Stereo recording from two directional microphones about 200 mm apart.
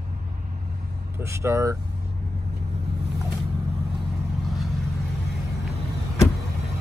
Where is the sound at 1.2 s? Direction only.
15° right (ahead or behind).